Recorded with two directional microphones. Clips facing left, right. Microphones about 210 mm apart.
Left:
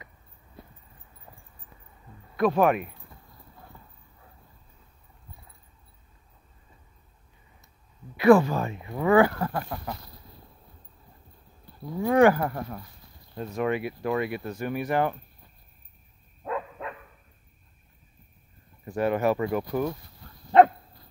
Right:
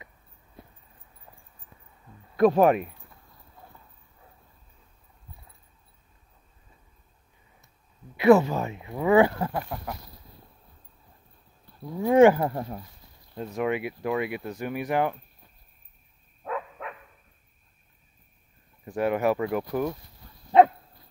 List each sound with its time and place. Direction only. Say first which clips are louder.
2.3 s speech: right 3 dB; 35° right (ahead or behind)
8.2 s speech: even; 20° right (ahead or behind)
9.1 s speech: even; 20° right (ahead or behind)
12.0 s speech: right 2 dB; 20° right (ahead or behind)
13.3 s speech: even; centre (ahead or behind)
16.4 s dog: left 1 dB; centre (ahead or behind)
18.9 s speech: even; 10° right (ahead or behind)